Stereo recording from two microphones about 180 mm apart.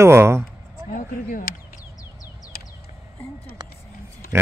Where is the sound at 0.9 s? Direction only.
50° left (ahead or behind).